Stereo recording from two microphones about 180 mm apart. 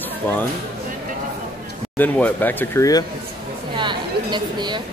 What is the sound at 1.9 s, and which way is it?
Speech, 10° left (ahead or behind).